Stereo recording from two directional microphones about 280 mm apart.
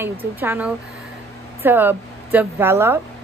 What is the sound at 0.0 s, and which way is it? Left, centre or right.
A woman's voice, centre.